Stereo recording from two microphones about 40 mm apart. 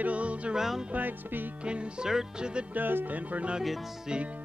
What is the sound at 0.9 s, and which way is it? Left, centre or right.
Music, right.